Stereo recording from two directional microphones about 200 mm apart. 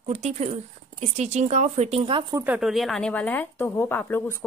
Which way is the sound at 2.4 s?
5° right (ahead or behind).